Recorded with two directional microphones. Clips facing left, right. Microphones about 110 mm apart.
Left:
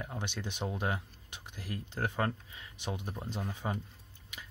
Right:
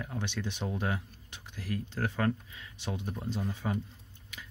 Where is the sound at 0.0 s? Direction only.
15° left (ahead or behind).